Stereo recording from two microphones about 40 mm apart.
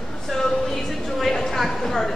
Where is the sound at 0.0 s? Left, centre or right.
Centre.